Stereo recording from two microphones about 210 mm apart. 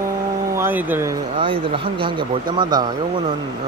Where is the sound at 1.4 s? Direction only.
25° right (ahead or behind).